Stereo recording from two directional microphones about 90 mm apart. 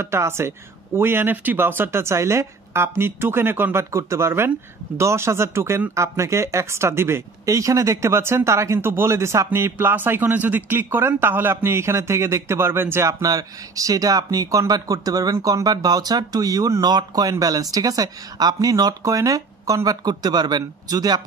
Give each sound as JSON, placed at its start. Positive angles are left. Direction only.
{"t": 0.0, "sound": "speech", "side_deg": -30}
{"t": 13.2, "sound": "speech", "side_deg": -40}